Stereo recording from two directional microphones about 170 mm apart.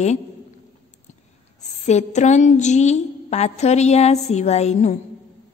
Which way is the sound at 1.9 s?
45° left (ahead or behind).